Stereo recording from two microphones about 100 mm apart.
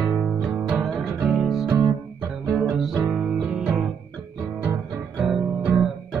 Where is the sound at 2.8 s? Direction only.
10° right (ahead or behind).